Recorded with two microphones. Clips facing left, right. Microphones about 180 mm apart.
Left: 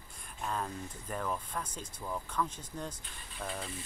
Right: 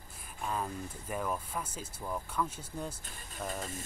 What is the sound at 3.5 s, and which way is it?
Speech, 45° right (ahead or behind).